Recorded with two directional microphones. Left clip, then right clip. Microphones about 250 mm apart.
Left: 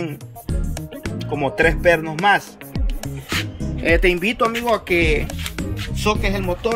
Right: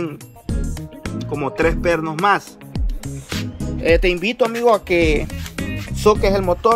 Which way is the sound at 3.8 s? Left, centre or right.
Centre.